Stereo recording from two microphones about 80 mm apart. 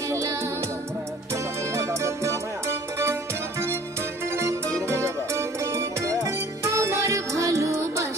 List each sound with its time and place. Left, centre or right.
1.3 s music: right
4.4 s music: right